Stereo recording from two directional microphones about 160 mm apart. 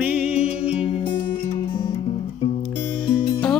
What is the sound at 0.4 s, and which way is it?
Music, 40° left (ahead or behind).